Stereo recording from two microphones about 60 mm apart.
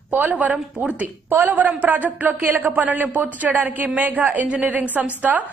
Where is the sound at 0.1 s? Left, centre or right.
Right.